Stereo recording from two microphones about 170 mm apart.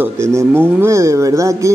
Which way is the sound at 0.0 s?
15° right (ahead or behind).